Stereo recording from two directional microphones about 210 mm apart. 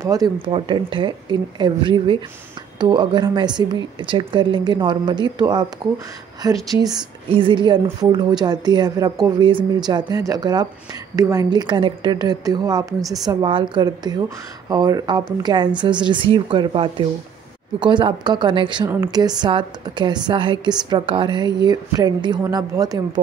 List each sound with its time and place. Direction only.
0.0 s a woman's voice: 15° right (ahead or behind)
13.0 s a woman's voice: centre (ahead or behind)
13.3 s a woman's voice: 20° right (ahead or behind)